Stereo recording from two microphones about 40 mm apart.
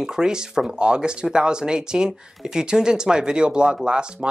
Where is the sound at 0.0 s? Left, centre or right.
Centre.